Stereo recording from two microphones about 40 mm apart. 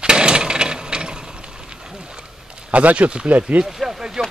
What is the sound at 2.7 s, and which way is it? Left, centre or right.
Speech, right.